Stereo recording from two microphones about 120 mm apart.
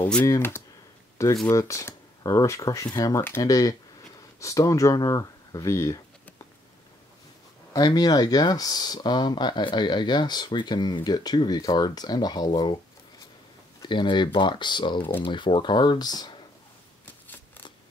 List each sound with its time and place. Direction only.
0.0 s speech: 15° left (ahead or behind)
1.5 s speech: 25° left (ahead or behind)
7.7 s speech: 35° left (ahead or behind)
13.8 s speech: 40° left (ahead or behind)
15.0 s speech: 15° left (ahead or behind)
15.2 s speech: 40° left (ahead or behind)